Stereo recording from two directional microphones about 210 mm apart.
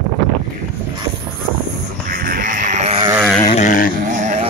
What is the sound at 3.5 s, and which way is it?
Dog, 40° left (ahead or behind).